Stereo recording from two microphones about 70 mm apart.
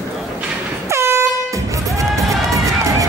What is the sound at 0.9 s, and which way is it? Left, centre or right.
Air horn, right.